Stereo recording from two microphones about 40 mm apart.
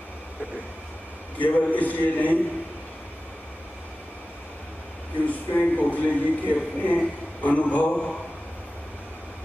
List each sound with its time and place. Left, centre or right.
1.4 s a man's voice: left
5.2 s speech: left